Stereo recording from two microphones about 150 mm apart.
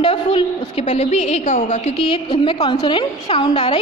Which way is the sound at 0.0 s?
35° left (ahead or behind).